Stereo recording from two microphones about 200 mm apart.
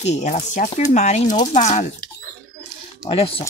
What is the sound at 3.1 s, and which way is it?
Speech, 30° left (ahead or behind).